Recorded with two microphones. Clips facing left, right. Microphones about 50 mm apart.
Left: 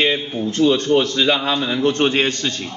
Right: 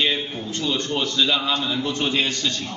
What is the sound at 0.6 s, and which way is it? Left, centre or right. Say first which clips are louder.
Speech: left 11 dB; left.